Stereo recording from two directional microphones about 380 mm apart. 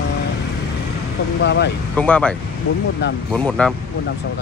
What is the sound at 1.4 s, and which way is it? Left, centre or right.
Speech, left.